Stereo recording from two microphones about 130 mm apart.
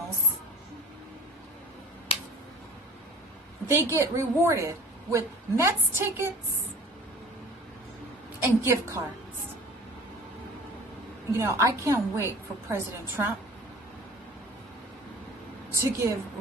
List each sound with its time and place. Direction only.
3.6 s a woman's voice: 20° right (ahead or behind)
8.4 s a woman's voice: 20° right (ahead or behind)
11.3 s a woman's voice: 20° right (ahead or behind)
15.7 s a woman's voice: 20° right (ahead or behind)